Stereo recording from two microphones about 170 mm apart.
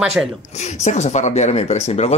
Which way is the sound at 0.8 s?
40° left (ahead or behind).